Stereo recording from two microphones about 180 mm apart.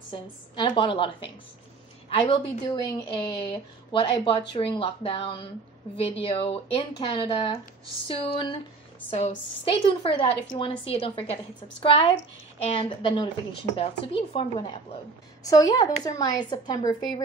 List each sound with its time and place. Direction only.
0.1 s speech: 25° left (ahead or behind)
11.8 s speech: 30° left (ahead or behind)